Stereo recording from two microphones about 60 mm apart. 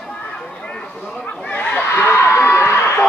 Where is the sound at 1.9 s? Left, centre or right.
Left.